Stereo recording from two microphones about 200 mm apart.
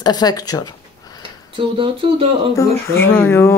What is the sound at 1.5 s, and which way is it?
Speech, 25° right (ahead or behind).